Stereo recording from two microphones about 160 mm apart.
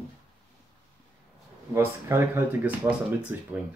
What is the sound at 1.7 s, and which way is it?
Speech, 15° right (ahead or behind).